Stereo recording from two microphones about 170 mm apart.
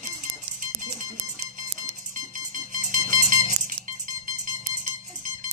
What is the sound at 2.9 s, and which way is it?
Music, 50° right (ahead or behind).